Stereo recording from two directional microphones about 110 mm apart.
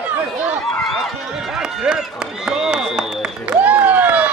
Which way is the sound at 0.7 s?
Centre (ahead or behind).